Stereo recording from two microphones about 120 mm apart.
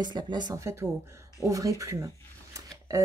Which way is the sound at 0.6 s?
25° right (ahead or behind).